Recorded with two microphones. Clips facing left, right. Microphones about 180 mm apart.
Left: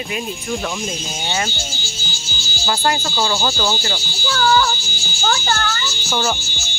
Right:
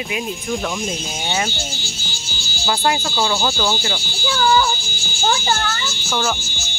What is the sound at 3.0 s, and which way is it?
Speech, centre (ahead or behind).